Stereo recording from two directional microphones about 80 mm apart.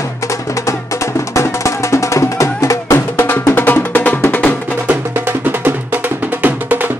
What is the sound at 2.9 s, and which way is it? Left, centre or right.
Music, left.